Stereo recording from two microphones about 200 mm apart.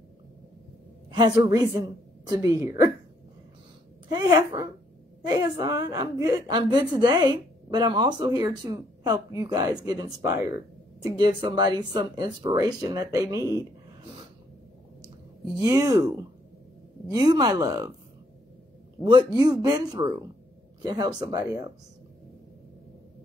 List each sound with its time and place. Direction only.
1.1 s a woman's voice: 20° right (ahead or behind)
4.1 s a woman's voice: 20° right (ahead or behind)
15.6 s a woman's voice: 15° right (ahead or behind)
17.1 s a woman's voice: 20° right (ahead or behind)
19.0 s a woman's voice: 20° right (ahead or behind)